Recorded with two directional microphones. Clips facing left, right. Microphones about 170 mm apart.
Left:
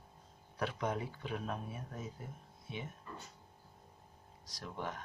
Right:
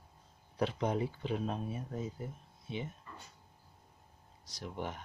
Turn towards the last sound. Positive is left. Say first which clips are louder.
# right 2 dB
turn(degrees=-25)  # may be behind; listen again after turning